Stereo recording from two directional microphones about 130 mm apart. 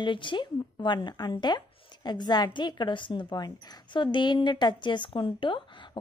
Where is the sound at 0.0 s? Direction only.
40° left (ahead or behind).